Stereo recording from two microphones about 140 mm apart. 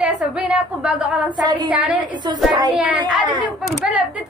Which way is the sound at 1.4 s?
30° right (ahead or behind).